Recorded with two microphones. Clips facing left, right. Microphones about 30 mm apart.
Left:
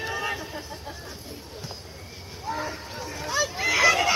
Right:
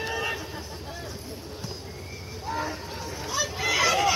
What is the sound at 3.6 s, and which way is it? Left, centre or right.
Children playing, left.